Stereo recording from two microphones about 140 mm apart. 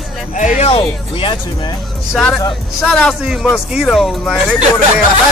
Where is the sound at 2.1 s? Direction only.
Centre (ahead or behind).